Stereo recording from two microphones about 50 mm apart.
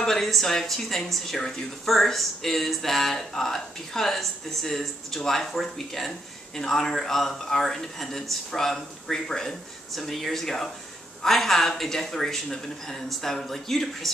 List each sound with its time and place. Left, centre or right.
0.0 s speech: centre